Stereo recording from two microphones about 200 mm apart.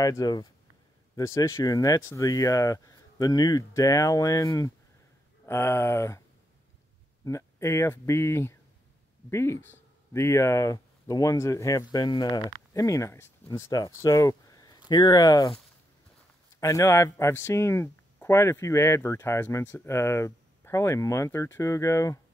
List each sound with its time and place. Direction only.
0.0 s speech: 20° left (ahead or behind)
7.2 s speech: 15° left (ahead or behind)
16.5 s speech: 15° left (ahead or behind)